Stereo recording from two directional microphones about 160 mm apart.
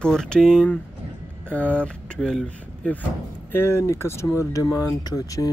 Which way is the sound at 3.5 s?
15° left (ahead or behind).